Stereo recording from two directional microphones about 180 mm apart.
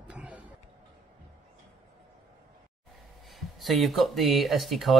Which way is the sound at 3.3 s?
Centre (ahead or behind).